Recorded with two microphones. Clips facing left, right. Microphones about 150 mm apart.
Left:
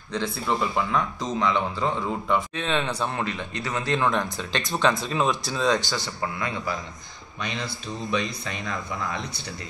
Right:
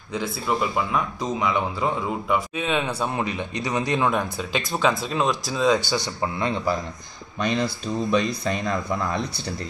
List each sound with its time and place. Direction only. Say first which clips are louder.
0.1 s speech: right 1 dB; 10° right (ahead or behind)
6.2 s a man's voice: right 5 dB; 25° right (ahead or behind)
7.3 s speech: right 8 dB; 40° right (ahead or behind)